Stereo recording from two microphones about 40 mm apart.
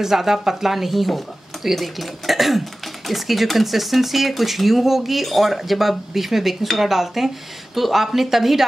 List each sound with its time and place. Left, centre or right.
0.0 s speech: centre